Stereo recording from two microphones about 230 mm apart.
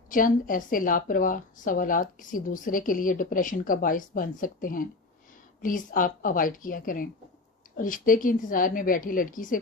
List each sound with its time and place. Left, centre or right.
0.1 s a woman's voice: left